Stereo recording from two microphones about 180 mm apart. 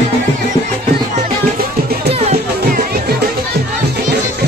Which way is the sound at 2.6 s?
60° right (ahead or behind).